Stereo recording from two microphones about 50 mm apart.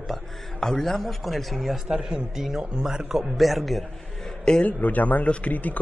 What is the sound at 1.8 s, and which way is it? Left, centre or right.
A man's voice, centre.